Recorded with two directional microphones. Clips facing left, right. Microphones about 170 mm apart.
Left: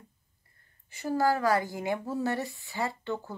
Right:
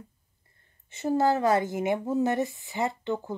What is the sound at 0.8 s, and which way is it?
Speech, 25° right (ahead or behind).